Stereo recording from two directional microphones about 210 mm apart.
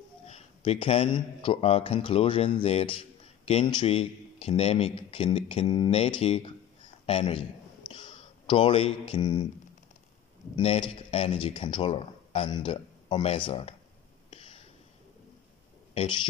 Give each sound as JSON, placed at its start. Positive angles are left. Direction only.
{"t": 0.3, "sound": "speech", "side_deg": 25}
{"t": 10.5, "sound": "speech", "side_deg": 25}
{"t": 15.9, "sound": "speech", "side_deg": 30}